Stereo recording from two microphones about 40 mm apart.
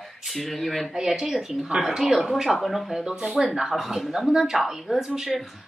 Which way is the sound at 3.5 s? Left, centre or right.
Centre.